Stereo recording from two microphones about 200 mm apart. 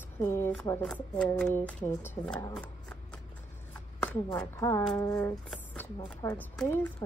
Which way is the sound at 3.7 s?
5° left (ahead or behind).